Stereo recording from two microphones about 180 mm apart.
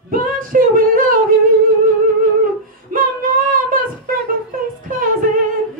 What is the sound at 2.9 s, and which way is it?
Female singing, 50° right (ahead or behind).